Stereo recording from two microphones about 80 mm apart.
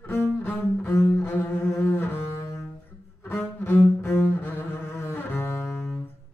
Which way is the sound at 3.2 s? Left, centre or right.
Left.